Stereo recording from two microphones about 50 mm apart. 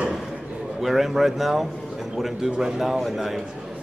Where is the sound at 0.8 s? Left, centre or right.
Centre.